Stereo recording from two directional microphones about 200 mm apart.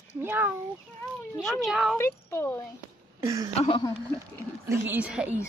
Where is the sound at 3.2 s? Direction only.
15° right (ahead or behind).